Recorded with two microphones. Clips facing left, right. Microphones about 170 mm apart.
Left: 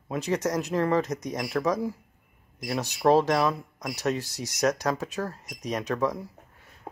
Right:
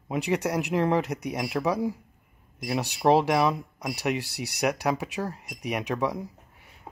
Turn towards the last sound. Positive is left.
turn(degrees=-15)  # may be behind; listen again after turning